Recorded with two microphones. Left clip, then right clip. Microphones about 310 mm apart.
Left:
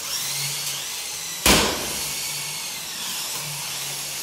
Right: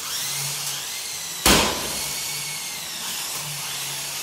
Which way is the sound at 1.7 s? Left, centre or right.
Centre.